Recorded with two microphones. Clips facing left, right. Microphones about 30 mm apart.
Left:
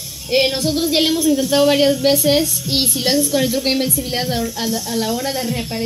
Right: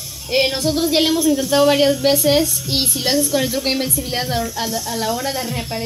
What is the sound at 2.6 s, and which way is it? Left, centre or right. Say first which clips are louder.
Speech: left 1 dB; left.